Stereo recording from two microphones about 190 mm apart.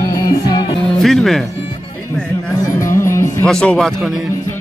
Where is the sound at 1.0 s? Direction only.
Centre (ahead or behind).